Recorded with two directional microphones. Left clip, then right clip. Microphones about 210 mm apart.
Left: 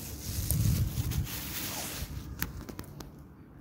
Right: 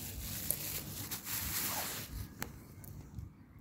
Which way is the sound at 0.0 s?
45° right (ahead or behind).